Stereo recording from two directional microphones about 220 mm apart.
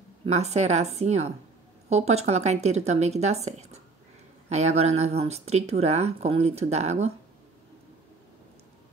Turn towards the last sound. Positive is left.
turn(degrees=-30)  # may be behind; listen again after turning